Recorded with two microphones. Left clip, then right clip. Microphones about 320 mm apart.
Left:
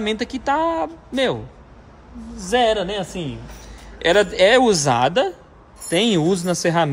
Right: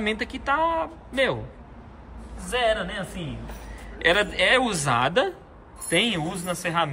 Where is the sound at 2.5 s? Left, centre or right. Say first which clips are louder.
Left 6 dB; centre.